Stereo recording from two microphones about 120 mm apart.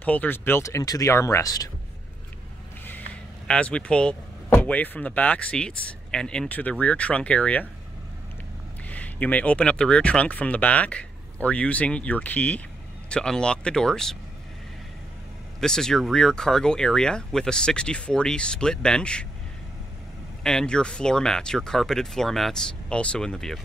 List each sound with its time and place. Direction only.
0.0 s speech: 15° left (ahead or behind); by 1.7 s 30° left (ahead or behind)
3.4 s speech: 10° left (ahead or behind)
8.8 s speech: 10° left (ahead or behind)
15.6 s speech: 5° left (ahead or behind)
20.4 s speech: 5° left (ahead or behind)